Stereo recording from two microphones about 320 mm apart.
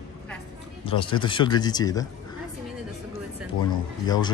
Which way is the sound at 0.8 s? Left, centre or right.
Centre.